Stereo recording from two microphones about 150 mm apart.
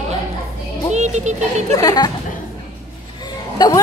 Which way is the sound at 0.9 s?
50° right (ahead or behind).